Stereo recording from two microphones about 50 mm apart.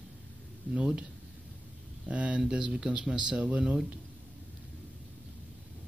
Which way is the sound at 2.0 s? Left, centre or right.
Right.